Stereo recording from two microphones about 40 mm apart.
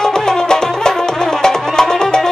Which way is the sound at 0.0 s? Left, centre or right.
Centre.